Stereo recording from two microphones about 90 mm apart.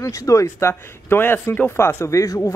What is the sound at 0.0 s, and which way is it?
Speech, 35° left (ahead or behind).